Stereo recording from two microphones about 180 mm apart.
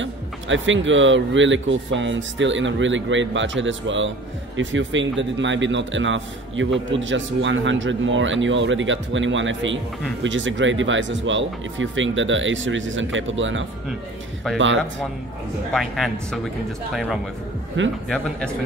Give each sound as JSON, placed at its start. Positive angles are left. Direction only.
{"t": 0.0, "sound": "a man's voice", "side_deg": -90}
{"t": 15.7, "sound": "speech", "side_deg": 0}